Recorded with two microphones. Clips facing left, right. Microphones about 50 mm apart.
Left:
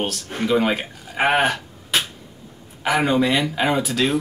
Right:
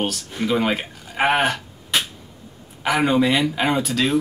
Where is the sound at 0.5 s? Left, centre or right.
Centre.